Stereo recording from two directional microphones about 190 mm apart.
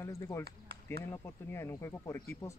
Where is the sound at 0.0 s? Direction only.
15° left (ahead or behind).